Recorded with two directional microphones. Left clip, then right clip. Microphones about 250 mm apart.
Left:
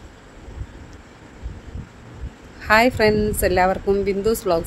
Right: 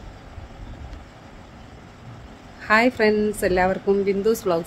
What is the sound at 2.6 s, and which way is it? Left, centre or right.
Speech, centre.